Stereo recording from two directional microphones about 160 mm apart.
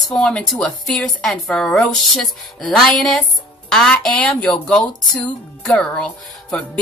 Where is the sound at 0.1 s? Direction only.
5° left (ahead or behind).